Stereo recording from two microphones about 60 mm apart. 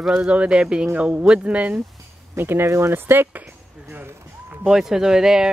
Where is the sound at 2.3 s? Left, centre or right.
Right.